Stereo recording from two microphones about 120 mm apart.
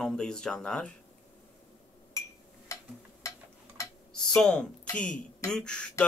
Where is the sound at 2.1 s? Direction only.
25° left (ahead or behind).